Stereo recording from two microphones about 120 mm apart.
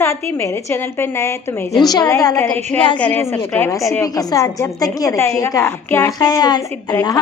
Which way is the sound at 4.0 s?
30° left (ahead or behind).